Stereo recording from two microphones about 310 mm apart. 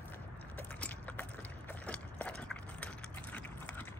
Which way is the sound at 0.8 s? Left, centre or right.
Centre.